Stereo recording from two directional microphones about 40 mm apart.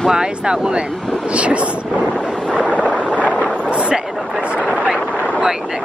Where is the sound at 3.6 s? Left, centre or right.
Right.